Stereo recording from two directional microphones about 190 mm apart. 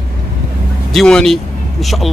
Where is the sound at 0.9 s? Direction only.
5° left (ahead or behind).